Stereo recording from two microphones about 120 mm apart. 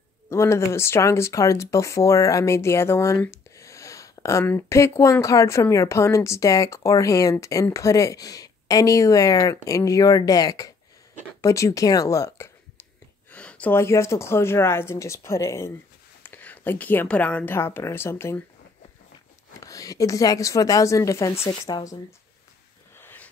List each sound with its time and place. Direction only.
0.3 s speech: 25° left (ahead or behind)
3.3 s a sound: 25° left (ahead or behind)
4.5 s speech: 20° left (ahead or behind)
13.3 s speech: 10° left (ahead or behind)
19.6 s speech: 30° left (ahead or behind)
22.9 s a sound: 15° left (ahead or behind)